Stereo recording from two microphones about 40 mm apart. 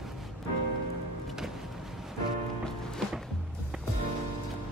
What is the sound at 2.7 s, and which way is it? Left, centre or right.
Music, centre.